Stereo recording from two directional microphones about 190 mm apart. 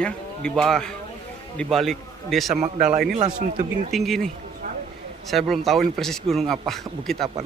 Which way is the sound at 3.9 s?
Centre (ahead or behind).